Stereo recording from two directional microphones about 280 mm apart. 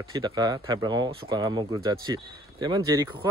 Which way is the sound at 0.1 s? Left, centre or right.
Centre.